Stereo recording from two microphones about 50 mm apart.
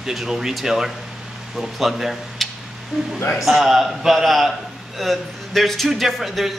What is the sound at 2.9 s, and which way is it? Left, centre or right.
Speech, centre.